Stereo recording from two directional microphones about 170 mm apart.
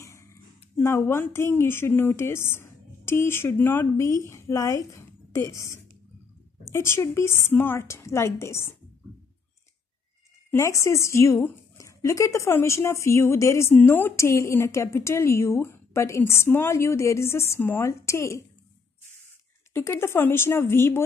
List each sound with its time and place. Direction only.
0.0 s a woman's voice: 15° left (ahead or behind)
10.5 s a woman's voice: 15° left (ahead or behind)
19.7 s a woman's voice: 15° left (ahead or behind)